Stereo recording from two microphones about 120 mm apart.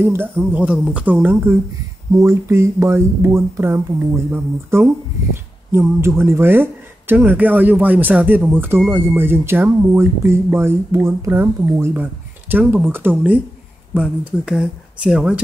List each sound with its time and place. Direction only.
0.0 s speech: 20° right (ahead or behind)